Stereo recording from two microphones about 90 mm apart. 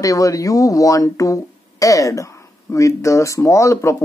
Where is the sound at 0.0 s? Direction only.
40° left (ahead or behind).